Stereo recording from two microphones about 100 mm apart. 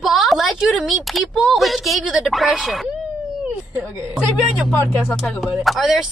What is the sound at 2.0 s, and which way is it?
Speech, 5° right (ahead or behind).